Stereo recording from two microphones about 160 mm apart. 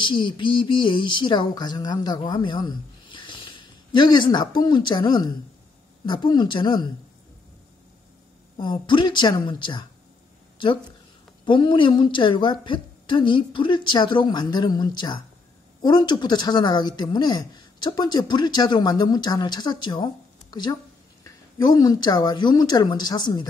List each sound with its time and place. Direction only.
0.0 s speech: 30° left (ahead or behind)
8.5 s speech: 30° left (ahead or behind)
11.4 s speech: 30° left (ahead or behind)
21.2 s speech: 25° left (ahead or behind)